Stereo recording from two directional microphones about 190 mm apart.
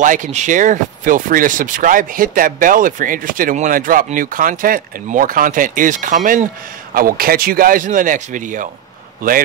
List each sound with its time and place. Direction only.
0.0 s speech: 40° right (ahead or behind)